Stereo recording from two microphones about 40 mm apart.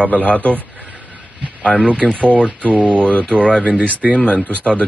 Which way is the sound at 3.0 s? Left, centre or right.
Left.